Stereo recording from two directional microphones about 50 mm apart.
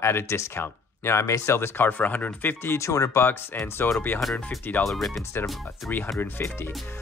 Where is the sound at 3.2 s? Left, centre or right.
Left.